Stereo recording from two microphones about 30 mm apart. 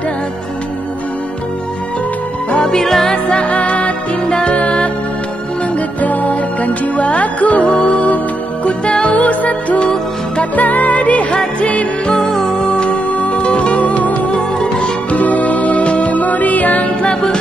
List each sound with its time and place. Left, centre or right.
2.6 s music: centre
3.1 s music: left
3.4 s music: left
5.9 s music: left
8.8 s music: left
9.1 s music: left
11.3 s music: left
12.4 s music: left
12.7 s music: left
13.1 s music: left
14.3 s music: left
15.1 s music: left
16.1 s music: left